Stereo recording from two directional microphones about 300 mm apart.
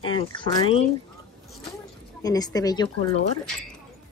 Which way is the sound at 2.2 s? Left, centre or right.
Centre.